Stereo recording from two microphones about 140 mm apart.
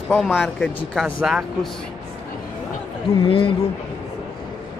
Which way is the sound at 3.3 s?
40° left (ahead or behind).